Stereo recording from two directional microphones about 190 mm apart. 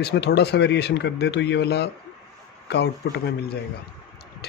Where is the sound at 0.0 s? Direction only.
60° left (ahead or behind).